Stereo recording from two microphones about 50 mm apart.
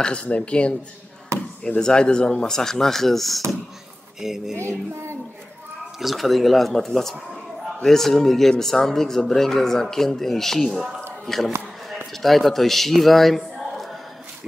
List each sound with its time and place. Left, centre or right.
0.0 s speech: left
1.3 s basketball bounce: right
1.8 s speech: centre
4.2 s speech: centre
4.6 s music: right
5.9 s a man's voice: centre